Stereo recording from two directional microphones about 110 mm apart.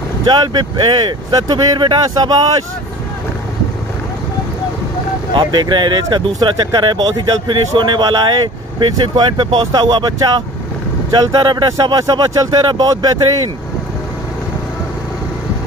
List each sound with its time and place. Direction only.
0.2 s speech: 45° right (ahead or behind)
5.3 s speech: 45° right (ahead or behind)